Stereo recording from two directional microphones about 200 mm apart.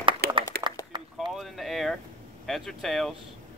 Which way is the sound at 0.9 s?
25° right (ahead or behind).